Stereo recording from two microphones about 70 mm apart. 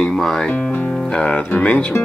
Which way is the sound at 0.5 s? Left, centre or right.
Centre.